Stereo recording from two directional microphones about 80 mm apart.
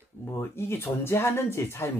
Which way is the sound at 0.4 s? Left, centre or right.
Left.